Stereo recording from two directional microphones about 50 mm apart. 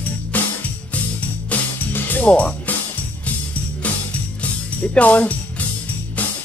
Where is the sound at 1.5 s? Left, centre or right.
Left.